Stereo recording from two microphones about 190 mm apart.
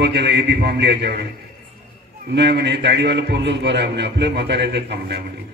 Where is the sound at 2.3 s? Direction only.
65° right (ahead or behind).